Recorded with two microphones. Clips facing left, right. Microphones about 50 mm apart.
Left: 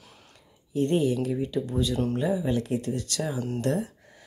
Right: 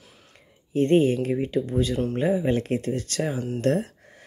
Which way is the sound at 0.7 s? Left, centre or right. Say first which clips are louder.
Right 5 dB; right.